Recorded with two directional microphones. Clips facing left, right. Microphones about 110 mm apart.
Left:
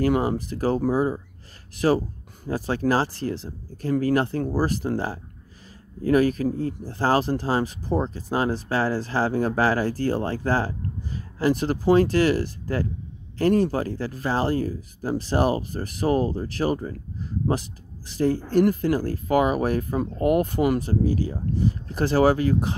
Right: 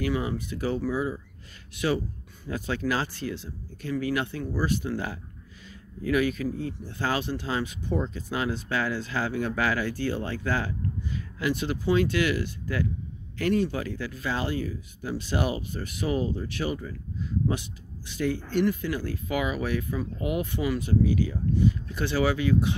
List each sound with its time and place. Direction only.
0.0 s speech: 45° left (ahead or behind)